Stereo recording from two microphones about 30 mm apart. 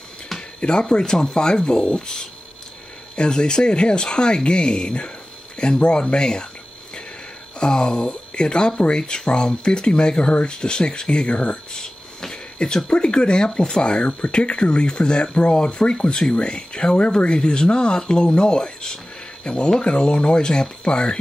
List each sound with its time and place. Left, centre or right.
0.6 s speech: left
3.2 s speech: left
7.5 s speech: left
11.2 s speech: left
11.7 s a sound: centre
12.5 s speech: left
19.4 s speech: left